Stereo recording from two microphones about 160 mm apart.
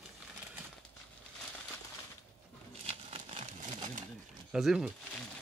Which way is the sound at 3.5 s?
55° right (ahead or behind).